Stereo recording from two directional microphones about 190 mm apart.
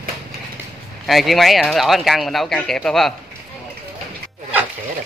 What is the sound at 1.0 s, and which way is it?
Speech, centre (ahead or behind).